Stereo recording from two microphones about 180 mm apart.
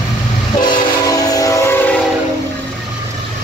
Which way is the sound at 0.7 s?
20° left (ahead or behind).